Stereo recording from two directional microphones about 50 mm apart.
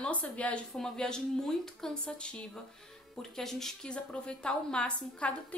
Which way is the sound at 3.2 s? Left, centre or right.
Centre.